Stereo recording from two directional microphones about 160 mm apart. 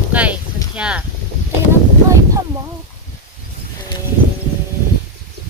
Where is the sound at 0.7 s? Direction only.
5° right (ahead or behind).